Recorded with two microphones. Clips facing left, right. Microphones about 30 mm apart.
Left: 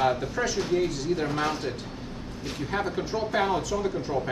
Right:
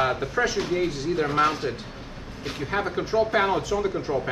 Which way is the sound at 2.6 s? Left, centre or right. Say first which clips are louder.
Right 2 dB; centre.